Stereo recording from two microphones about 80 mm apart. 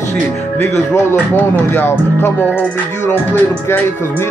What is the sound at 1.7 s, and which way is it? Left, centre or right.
Music, left.